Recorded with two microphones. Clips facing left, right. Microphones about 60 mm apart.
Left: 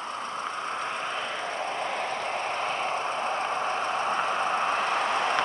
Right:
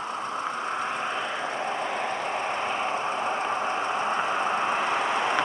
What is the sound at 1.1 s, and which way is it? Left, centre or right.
Vehicle, centre.